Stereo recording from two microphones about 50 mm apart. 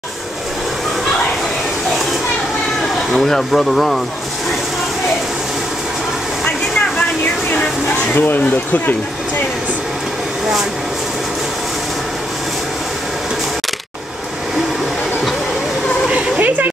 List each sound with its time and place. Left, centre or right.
3.1 s speech: centre
8.1 s speech: left
16.3 s a sound: right